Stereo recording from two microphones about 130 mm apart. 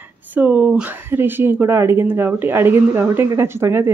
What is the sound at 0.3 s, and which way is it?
Speech, 15° right (ahead or behind).